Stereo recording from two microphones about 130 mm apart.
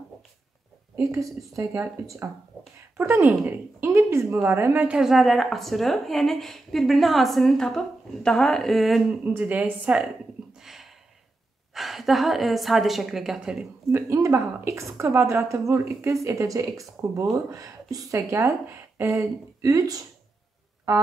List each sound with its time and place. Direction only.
2.2 s speech: 20° right (ahead or behind); by 9.1 s centre (ahead or behind)
9.2 s a woman's voice: 10° right (ahead or behind)
10.6 s a sound: centre (ahead or behind)
11.7 s speech: centre (ahead or behind)
13.9 s speech: 20° right (ahead or behind)